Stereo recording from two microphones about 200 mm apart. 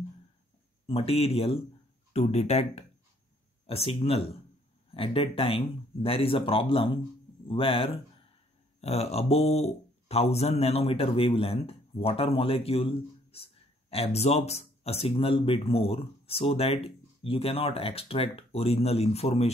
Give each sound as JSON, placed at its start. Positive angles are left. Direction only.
{"t": 0.8, "sound": "speech", "side_deg": 30}